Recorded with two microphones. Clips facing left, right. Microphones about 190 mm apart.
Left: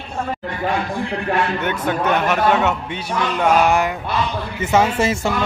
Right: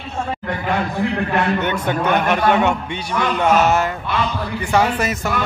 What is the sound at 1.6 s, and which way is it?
A man's voice, 5° left (ahead or behind).